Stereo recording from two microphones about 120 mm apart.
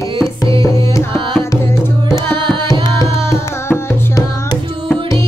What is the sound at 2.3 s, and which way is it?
Tabla, 40° right (ahead or behind).